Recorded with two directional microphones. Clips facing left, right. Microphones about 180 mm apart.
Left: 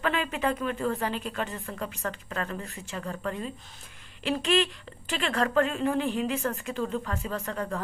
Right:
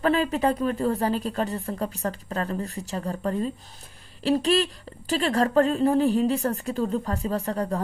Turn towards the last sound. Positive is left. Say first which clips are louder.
# right 5 dB
turn(degrees=-35)  # may be behind; listen again after turning